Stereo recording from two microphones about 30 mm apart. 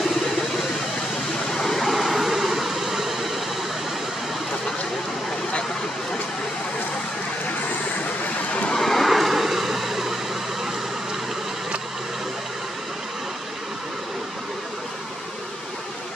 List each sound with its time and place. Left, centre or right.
1.5 s a sound: centre
2.0 s vehicle: centre
8.7 s vehicle: centre
9.1 s vehicle: centre